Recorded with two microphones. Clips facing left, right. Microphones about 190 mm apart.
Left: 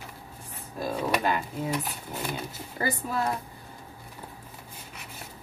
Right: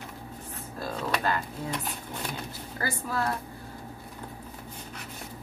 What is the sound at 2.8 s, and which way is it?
Speech, 20° left (ahead or behind).